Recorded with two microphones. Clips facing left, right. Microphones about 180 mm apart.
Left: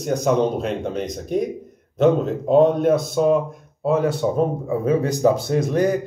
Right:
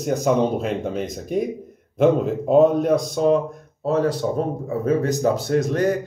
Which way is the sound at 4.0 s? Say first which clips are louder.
Left 1 dB; 25° left (ahead or behind).